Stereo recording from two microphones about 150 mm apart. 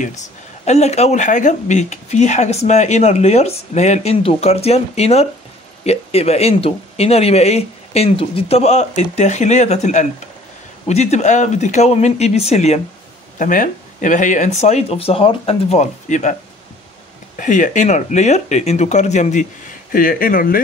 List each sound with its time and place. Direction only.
0.7 s speech: 45° left (ahead or behind)
13.4 s speech: 60° left (ahead or behind)
17.4 s speech: 60° left (ahead or behind)
19.9 s speech: 70° left (ahead or behind)